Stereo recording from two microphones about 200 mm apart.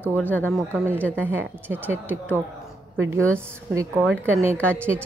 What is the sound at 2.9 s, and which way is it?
Speech, 85° right.